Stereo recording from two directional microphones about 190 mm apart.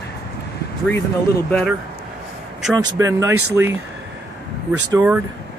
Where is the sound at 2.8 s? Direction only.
15° right (ahead or behind).